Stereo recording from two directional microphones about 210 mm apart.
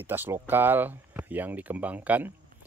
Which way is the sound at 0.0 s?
10° right (ahead or behind).